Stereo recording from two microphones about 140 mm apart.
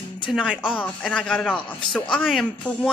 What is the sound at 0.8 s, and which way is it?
A man's voice, 10° left (ahead or behind).